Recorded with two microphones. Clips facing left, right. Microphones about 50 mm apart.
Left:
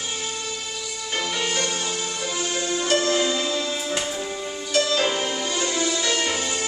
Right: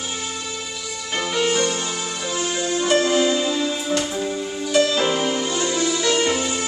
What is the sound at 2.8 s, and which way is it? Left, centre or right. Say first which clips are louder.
Music: right 4 dB; centre.